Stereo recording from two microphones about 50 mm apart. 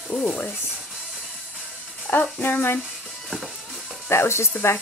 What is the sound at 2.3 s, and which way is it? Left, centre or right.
Speech, left.